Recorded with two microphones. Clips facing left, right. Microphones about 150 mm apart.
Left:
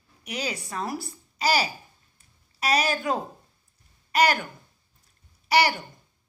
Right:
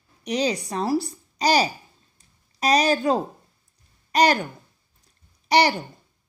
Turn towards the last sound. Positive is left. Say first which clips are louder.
# right 3 dB
turn(degrees=-35)  # may be behind; listen again after turning